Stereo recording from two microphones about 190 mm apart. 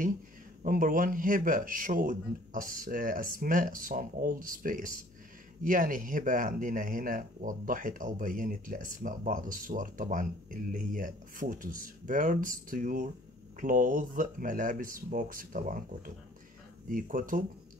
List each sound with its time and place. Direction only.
0.6 s speech: 45° right (ahead or behind)